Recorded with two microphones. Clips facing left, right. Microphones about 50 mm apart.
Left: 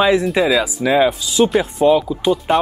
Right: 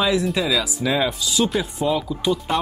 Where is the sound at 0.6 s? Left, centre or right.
Left.